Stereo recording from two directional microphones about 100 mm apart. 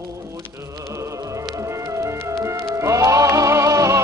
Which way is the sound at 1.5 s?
30° right (ahead or behind).